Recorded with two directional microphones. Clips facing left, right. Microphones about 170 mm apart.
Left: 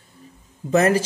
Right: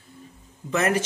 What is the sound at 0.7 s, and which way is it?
Speech, 35° left (ahead or behind).